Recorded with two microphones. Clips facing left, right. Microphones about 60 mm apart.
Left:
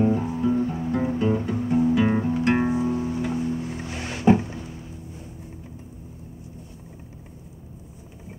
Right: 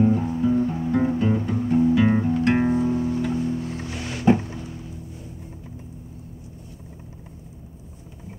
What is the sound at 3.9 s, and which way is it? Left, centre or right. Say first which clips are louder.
Music: right 1 dB; left.